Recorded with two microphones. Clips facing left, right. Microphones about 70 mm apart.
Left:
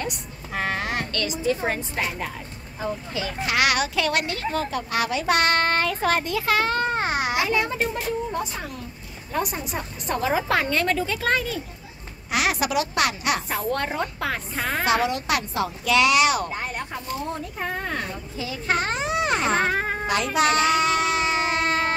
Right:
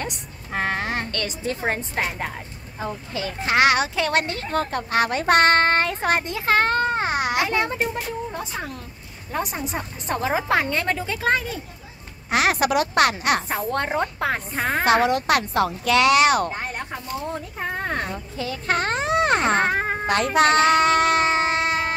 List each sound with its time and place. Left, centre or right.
0.0 s a sound: right
1.6 s speech: right
6.5 s speech: right
6.9 s babbling: right
9.3 s a woman's voice: right
12.3 s speech: right
17.7 s speech: right
20.1 s child singing: right
21.6 s music: centre